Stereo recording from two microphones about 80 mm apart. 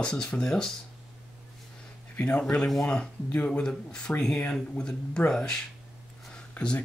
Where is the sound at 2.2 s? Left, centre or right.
Centre.